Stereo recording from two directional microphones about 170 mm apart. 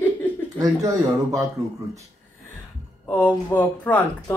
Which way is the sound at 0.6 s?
20° right (ahead or behind).